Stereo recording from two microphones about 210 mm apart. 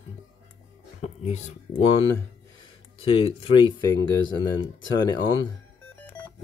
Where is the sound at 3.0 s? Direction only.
25° left (ahead or behind).